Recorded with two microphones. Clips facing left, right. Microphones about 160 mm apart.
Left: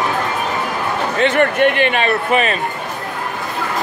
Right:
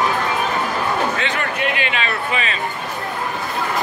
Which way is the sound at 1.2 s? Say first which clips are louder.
Left 9 dB; 50° left (ahead or behind).